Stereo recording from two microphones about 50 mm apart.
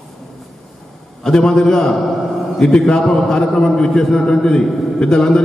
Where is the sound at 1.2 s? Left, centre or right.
Centre.